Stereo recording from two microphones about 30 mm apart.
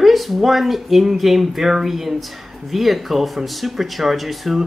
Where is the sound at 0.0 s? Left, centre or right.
Centre.